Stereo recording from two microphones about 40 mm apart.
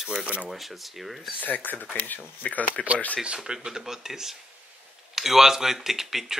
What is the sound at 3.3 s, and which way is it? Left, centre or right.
Speech, centre.